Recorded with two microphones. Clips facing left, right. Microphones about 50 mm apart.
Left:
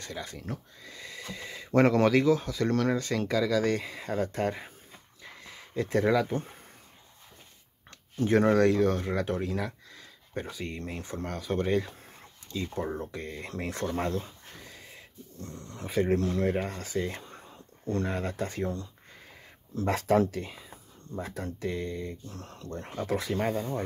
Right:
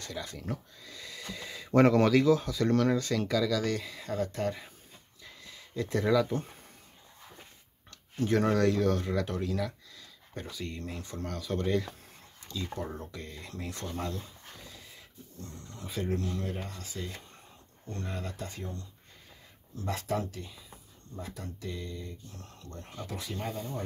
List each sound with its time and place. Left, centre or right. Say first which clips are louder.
0.0 s speech: left 1 dB; centre
0.8 s a sound: left 2 dB; centre
1.8 s speech: even; centre
3.3 s speech: left 5 dB; left
5.2 s a sound: left 3 dB; left
8.2 s speech: left 4 dB; centre; by 14.3 s left
15.4 s speech: left 4 dB; left
16.2 s speech: left 8 dB; left
17.2 s a sound: left 6 dB; left
18.2 s speech: left 7 dB; left
18.6 s speech: left 9 dB; left
19.9 s speech: left 8 dB; left
22.3 s speech: left 7 dB; left